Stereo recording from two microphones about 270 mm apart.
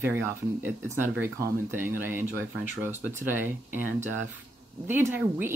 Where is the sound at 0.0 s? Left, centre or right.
Centre.